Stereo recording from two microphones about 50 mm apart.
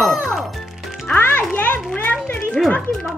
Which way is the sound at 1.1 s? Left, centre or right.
Left.